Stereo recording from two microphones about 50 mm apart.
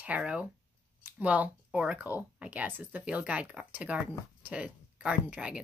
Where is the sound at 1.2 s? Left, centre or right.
Right.